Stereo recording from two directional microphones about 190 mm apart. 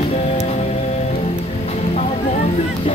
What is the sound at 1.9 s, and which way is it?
Music, 35° left (ahead or behind).